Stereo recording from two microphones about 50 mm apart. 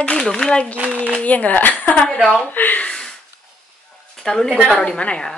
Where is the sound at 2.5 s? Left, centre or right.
Left.